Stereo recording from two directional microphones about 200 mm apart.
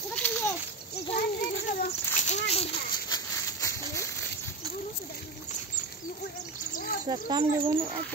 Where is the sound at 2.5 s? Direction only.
30° left (ahead or behind).